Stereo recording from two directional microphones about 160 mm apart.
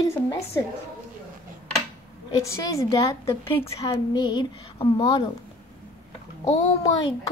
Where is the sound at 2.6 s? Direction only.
20° left (ahead or behind).